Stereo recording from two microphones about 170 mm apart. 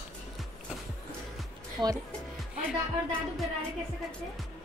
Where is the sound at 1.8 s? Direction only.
25° right (ahead or behind).